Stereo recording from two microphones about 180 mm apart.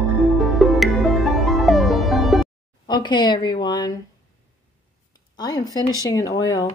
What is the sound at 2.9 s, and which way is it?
A woman's voice, 25° left (ahead or behind).